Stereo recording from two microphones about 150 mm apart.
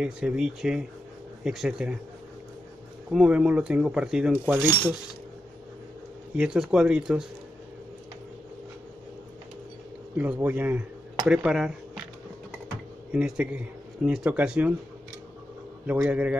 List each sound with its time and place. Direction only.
0.0 s speech: 5° right (ahead or behind)
3.1 s speech: 5° right (ahead or behind)
4.6 s a man's voice: 15° right (ahead or behind)
6.3 s speech: 5° right (ahead or behind)
10.1 s a man's voice: 10° right (ahead or behind)
13.1 s a man's voice: 5° right (ahead or behind)
15.9 s a man's voice: 10° right (ahead or behind)